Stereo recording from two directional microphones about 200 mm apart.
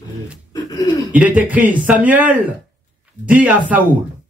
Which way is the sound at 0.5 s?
20° left (ahead or behind).